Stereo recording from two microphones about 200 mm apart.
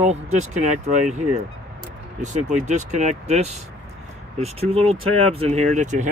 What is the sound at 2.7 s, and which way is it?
Speech, 35° right (ahead or behind).